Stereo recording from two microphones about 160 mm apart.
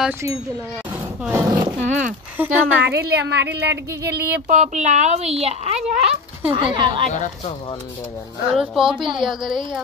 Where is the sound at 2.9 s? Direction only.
90° right.